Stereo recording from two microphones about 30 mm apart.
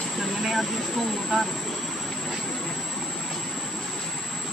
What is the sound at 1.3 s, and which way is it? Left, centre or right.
Speech, centre.